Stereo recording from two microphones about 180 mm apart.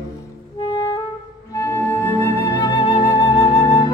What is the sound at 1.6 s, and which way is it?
Music, 15° left (ahead or behind).